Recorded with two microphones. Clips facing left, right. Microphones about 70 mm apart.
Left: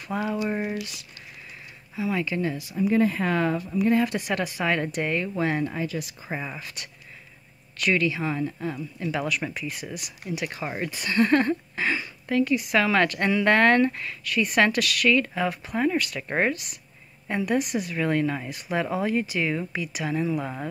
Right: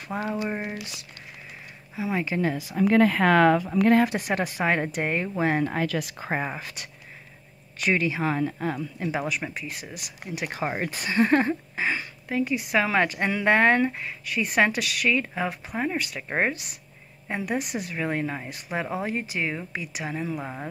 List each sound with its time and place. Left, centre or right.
0.1 s speech: right
0.5 s speech: centre
2.0 s speech: right
2.7 s a woman's voice: right
4.4 s speech: right
5.7 s speech: right
6.2 s speech: right
7.8 s speech: right
8.2 s speech: right
9.1 s speech: centre
10.4 s speech: right
11.1 s a woman's voice: centre
17.4 s speech: right
17.7 s speech: centre